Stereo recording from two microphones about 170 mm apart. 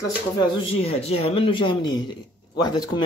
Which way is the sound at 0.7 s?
35° left (ahead or behind).